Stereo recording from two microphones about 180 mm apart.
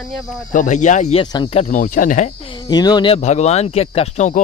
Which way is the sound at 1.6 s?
50° left (ahead or behind).